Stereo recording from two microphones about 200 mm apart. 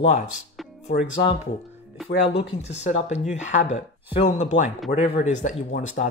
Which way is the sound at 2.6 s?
35° left (ahead or behind).